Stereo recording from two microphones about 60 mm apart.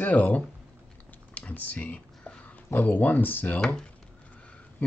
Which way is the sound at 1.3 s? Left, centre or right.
Left.